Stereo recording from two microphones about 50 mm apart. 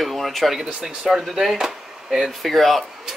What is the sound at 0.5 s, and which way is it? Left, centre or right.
Speech, centre.